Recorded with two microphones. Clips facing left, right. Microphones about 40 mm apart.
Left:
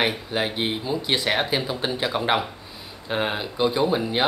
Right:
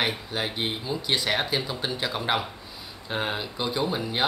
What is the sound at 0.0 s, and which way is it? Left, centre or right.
Speech, centre.